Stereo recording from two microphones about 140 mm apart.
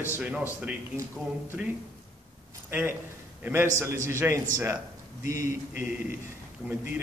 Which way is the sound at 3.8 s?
20° right (ahead or behind).